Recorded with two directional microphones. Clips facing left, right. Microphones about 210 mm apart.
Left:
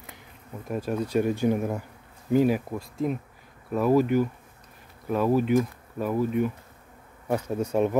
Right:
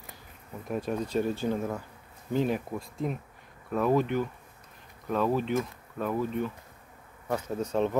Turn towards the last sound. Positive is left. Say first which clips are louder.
# left 4 dB
turn(degrees=10)  # may be behind; listen again after turning